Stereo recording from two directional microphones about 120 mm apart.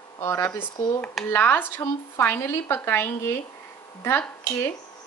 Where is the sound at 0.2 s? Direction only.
20° left (ahead or behind).